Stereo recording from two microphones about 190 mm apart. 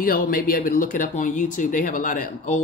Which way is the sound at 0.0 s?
50° left (ahead or behind).